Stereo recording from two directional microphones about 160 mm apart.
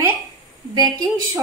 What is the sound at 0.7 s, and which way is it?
Speech, 25° right (ahead or behind).